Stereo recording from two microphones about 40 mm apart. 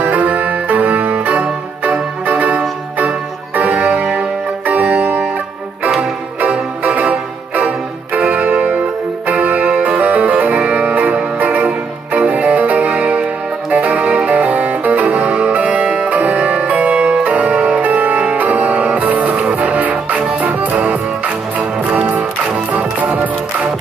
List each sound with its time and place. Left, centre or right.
0.0 s music: right
4.7 s music: right
6.4 s music: right
9.7 s music: right